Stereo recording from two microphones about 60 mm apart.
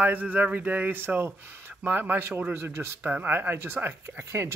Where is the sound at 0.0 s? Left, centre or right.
Right.